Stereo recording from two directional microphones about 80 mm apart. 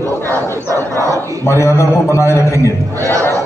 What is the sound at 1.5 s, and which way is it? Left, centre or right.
A man's voice, left.